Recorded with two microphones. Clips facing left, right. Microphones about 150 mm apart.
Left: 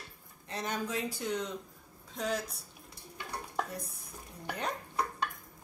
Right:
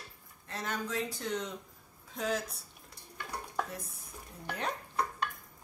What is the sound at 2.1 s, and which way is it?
Speech, centre (ahead or behind).